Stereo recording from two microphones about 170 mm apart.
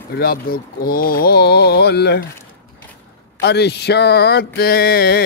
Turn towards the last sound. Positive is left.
turn(degrees=65)  # may be behind; listen again after turning